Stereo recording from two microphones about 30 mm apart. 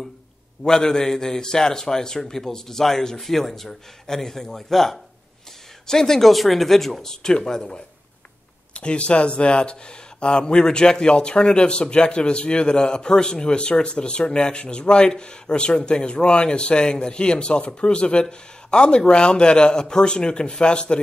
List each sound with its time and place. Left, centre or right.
0.7 s a man's voice: left
3.2 s a man's voice: centre
6.2 s a man's voice: centre; by 7.8 s left
8.7 s speech: left